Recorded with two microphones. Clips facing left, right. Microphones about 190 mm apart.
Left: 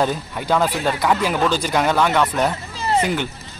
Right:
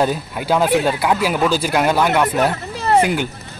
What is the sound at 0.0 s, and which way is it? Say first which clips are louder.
Speech: right 2 dB; 10° right (ahead or behind).